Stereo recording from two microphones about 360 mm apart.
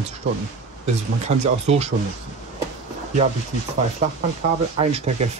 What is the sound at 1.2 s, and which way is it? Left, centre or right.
Speech, centre.